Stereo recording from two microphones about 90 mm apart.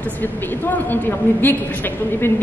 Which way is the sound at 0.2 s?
20° left (ahead or behind).